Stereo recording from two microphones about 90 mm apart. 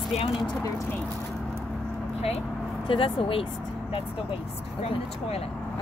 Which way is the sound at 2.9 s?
90° left.